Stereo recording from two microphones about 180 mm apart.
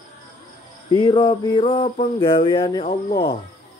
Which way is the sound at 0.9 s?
25° left (ahead or behind).